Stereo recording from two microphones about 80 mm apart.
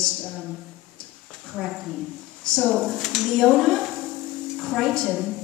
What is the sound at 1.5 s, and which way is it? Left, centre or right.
A woman's voice, centre.